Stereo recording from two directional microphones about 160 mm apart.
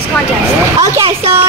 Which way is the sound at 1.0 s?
35° right (ahead or behind).